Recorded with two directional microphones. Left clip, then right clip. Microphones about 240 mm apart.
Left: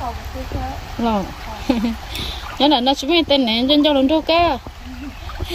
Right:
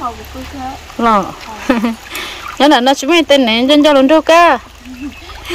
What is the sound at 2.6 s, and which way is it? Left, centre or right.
Speech, centre.